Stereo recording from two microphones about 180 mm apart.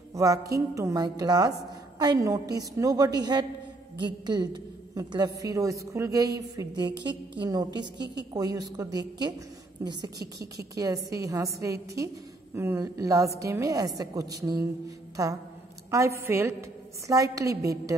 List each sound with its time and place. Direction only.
0.1 s a woman's voice: 20° right (ahead or behind)